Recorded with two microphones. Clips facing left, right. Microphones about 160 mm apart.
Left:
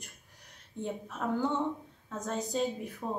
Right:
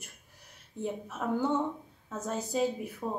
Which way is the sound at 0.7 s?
5° right (ahead or behind).